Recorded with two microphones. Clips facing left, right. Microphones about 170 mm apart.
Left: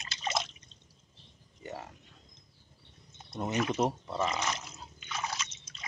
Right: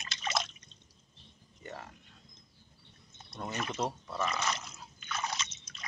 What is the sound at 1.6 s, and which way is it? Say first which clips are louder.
Speech: left 3 dB; 20° left (ahead or behind).